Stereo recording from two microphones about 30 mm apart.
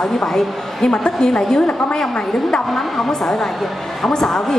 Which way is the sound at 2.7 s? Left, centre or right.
Centre.